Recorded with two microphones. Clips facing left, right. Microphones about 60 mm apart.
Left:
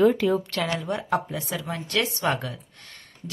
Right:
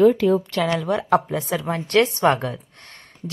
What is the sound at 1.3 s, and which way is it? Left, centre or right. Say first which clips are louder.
Speech: right 7 dB; right.